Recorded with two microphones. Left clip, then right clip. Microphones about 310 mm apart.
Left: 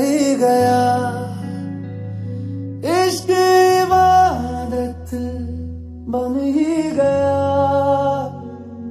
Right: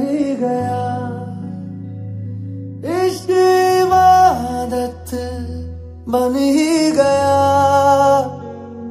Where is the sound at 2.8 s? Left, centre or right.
Centre.